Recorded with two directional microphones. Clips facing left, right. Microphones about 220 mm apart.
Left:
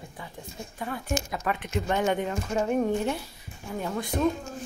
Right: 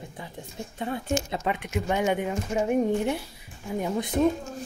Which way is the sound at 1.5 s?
10° right (ahead or behind).